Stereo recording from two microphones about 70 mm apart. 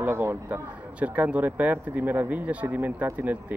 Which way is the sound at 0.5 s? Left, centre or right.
Right.